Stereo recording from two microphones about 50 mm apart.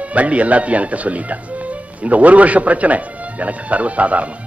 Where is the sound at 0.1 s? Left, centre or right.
Right.